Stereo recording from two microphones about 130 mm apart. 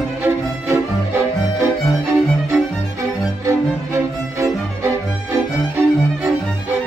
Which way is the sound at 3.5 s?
20° right (ahead or behind).